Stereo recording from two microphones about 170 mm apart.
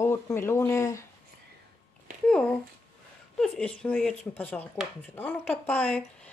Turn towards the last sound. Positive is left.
turn(degrees=5)  # may be behind; listen again after turning